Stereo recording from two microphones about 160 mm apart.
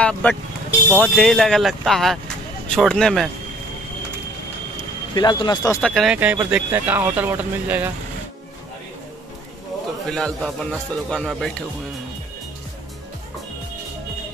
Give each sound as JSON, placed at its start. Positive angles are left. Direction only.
{"t": 0.0, "sound": "speech", "side_deg": 10}
{"t": 4.7, "sound": "vehicle", "side_deg": 25}
{"t": 5.8, "sound": "speech", "side_deg": 0}
{"t": 6.1, "sound": "speech", "side_deg": -10}
{"t": 10.1, "sound": "speech", "side_deg": 5}